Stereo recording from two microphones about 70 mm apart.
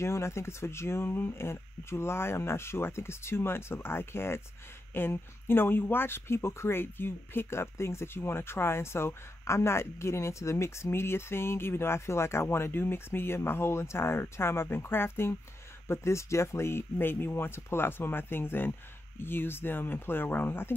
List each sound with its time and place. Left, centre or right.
0.0 s speech: left